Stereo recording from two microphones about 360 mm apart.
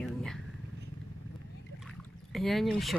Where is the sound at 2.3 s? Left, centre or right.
Centre.